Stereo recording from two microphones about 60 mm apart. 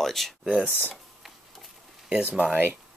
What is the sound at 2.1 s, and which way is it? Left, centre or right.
Speech, right.